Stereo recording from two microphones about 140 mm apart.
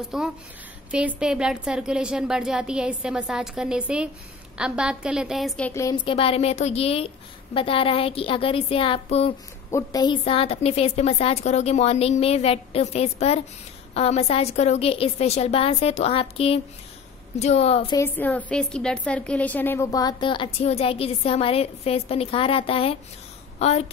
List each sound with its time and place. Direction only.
0.1 s a woman's voice: 5° right (ahead or behind)
5.6 s a woman's voice: 20° left (ahead or behind)
6.0 s a woman's voice: 45° left (ahead or behind)
9.7 s a woman's voice: 20° left (ahead or behind)
10.0 s speech: 40° left (ahead or behind)
18.0 s a woman's voice: 10° left (ahead or behind); by 23.9 s 50° left (ahead or behind)